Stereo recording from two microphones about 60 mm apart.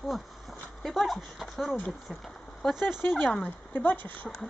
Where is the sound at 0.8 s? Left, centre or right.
Centre.